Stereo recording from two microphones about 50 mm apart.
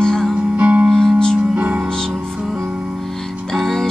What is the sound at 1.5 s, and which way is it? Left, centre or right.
Music, right.